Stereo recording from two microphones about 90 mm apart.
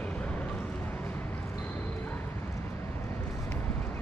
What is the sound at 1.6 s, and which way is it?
Bow-wow, 20° left (ahead or behind).